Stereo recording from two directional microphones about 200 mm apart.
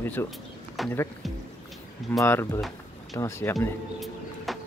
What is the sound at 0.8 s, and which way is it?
Speech, centre (ahead or behind).